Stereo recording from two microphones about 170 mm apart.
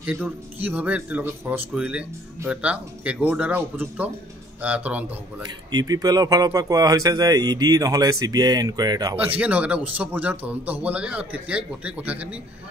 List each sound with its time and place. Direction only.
0.0 s speech: 10° right (ahead or behind)
5.7 s speech: 25° right (ahead or behind)
9.1 s speech: 10° right (ahead or behind)